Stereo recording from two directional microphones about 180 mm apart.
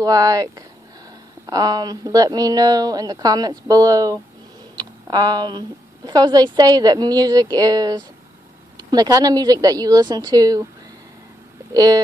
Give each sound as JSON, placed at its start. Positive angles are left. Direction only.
{"t": 0.0, "sound": "a woman's voice", "side_deg": -20}
{"t": 11.7, "sound": "a woman's voice", "side_deg": -20}